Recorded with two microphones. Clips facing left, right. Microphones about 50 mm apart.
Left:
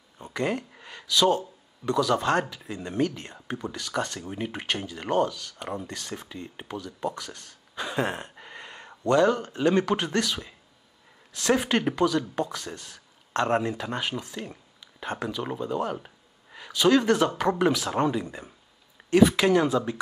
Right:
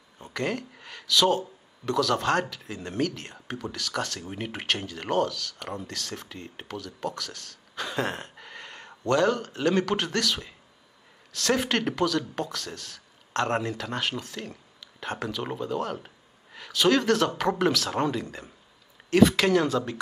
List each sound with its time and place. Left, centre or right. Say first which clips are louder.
0.2 s speech: left 2 dB; centre
1.2 s speech: left 2 dB; centre
1.9 s speech: left 1 dB; centre
4.2 s speech: left 2 dB; centre
4.9 s speech: left 2 dB; centre
5.2 s speech: left 1 dB; left
6.7 s a sound: left 1 dB; centre
9.0 s speech: left 2 dB; centre
11.3 s speech: left 2 dB; centre